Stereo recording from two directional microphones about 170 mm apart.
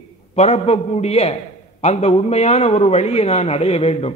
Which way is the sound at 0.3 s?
40° left (ahead or behind).